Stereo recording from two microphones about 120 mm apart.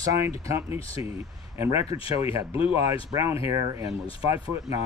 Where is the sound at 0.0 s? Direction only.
25° right (ahead or behind).